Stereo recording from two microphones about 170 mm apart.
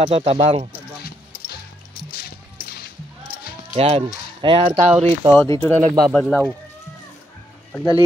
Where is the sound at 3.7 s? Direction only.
35° right (ahead or behind).